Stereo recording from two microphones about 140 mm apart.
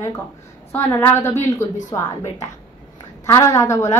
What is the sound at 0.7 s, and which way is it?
A woman's voice, 20° left (ahead or behind).